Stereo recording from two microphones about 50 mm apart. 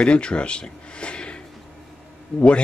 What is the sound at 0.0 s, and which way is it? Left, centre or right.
Speech, left.